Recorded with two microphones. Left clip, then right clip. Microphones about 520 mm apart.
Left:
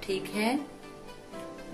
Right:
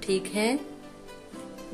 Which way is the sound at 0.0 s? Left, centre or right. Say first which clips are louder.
Right 4 dB; centre.